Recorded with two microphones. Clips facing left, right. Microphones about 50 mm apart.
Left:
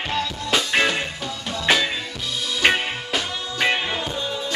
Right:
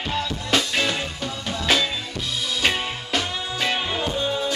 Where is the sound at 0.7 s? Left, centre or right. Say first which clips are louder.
Left 4 dB; left.